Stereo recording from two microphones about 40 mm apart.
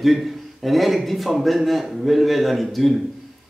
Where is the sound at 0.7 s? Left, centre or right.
Centre.